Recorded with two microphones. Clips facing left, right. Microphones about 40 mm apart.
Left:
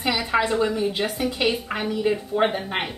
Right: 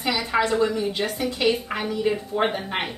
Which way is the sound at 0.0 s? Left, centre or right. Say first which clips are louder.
Left 1 dB; centre.